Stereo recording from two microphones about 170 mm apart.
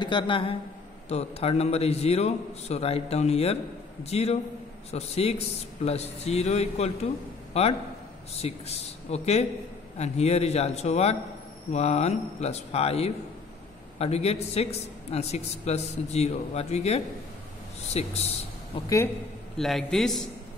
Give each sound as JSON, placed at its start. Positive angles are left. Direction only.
{"t": 0.0, "sound": "a man's voice", "side_deg": 30}
{"t": 19.5, "sound": "a man's voice", "side_deg": 0}